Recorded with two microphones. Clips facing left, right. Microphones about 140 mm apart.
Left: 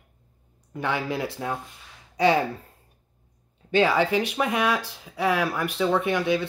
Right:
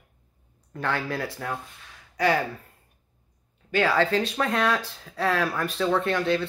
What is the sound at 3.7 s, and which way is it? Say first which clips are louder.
Speech: left 2 dB; 20° left (ahead or behind).